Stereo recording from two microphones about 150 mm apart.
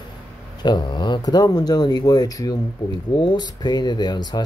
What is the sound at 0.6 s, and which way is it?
Speech, 30° left (ahead or behind).